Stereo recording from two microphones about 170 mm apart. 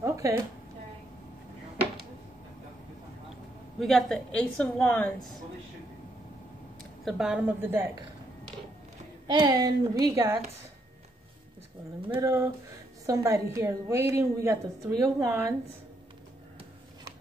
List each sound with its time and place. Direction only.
0.0 s a sound: 20° right (ahead or behind)
3.8 s a woman's voice: 5° left (ahead or behind)
7.1 s a woman's voice: 5° right (ahead or behind)
9.3 s a woman's voice: 25° right (ahead or behind)
12.1 s a woman's voice: 20° right (ahead or behind)